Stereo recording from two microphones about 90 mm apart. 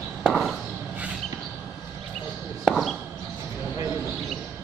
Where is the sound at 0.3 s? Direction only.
5° left (ahead or behind).